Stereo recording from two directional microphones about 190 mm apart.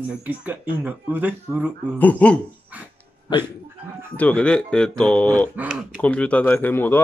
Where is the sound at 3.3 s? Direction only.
20° left (ahead or behind).